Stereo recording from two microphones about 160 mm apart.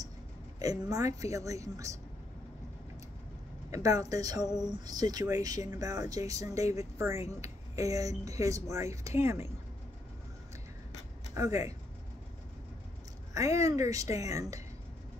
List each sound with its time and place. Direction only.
0.6 s speech: 20° right (ahead or behind)
3.7 s speech: 20° right (ahead or behind)
11.3 s speech: 20° right (ahead or behind)
13.3 s speech: 20° right (ahead or behind)